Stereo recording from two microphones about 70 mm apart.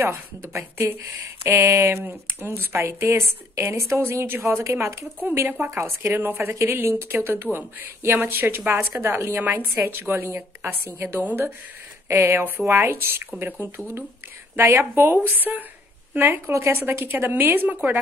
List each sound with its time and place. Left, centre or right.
0.0 s speech: right
1.4 s a sound: right
2.0 s speech: right
12.1 s speech: right